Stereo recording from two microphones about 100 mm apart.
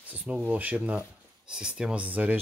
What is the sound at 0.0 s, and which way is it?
Speech, 15° right (ahead or behind).